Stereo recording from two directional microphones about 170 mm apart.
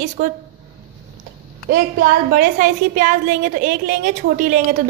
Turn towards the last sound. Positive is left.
turn(degrees=-55)  # may be behind; listen again after turning